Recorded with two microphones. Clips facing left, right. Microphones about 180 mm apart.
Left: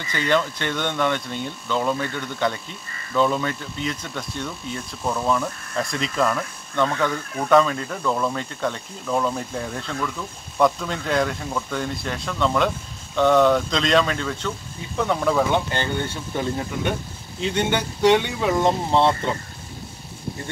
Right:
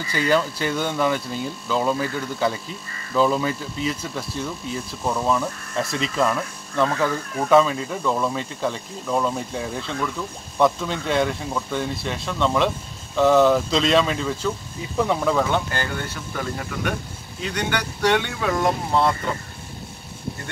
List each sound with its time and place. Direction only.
0.1 s speech: 5° right (ahead or behind)
15.5 s speech: 25° left (ahead or behind)